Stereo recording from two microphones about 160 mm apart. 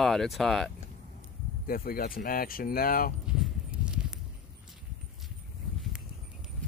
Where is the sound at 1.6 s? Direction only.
65° left (ahead or behind).